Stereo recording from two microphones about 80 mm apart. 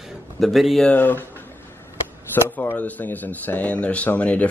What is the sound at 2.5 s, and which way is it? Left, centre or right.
Speech, left.